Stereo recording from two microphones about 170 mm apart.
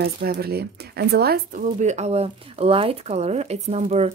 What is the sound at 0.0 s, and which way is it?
A woman's voice, 65° right (ahead or behind).